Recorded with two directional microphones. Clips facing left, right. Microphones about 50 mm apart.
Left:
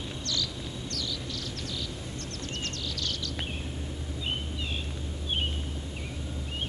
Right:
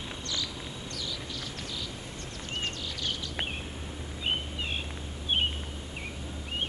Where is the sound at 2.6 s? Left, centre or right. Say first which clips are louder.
Right 1 dB; centre.